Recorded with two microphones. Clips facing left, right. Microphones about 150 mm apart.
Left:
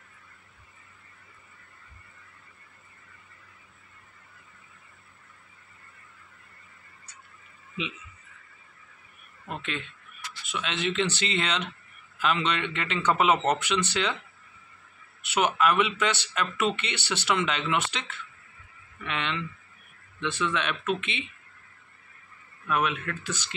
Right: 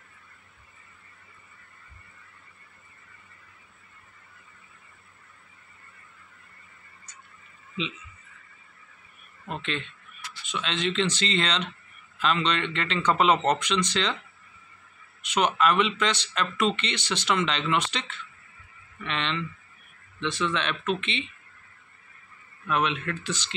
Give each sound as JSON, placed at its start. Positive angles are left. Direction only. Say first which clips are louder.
{"t": 9.5, "sound": "a man's voice", "louder": "right 2 dB", "side_deg": 10}
{"t": 15.2, "sound": "a man's voice", "louder": "right 1 dB", "side_deg": 10}
{"t": 22.7, "sound": "a man's voice", "louder": "right 1 dB", "side_deg": 5}